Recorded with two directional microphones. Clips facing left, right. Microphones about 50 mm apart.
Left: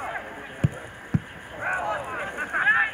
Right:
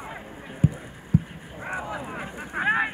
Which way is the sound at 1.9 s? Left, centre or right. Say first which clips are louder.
Left 3 dB; centre.